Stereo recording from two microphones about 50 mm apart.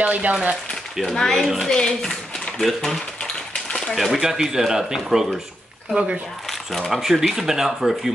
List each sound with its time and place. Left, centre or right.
0.0 s speech: right
1.0 s speech: centre
1.4 s speech: centre
1.7 s speech: centre
2.6 s speech: centre
6.9 s speech: centre